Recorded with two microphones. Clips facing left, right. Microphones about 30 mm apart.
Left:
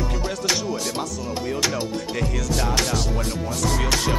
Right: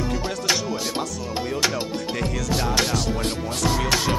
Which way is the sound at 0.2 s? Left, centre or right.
Centre.